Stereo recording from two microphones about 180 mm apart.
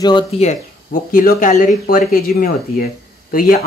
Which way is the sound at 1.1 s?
45° left (ahead or behind).